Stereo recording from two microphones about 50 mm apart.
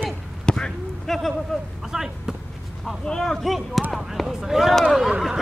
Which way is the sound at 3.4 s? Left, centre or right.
Centre.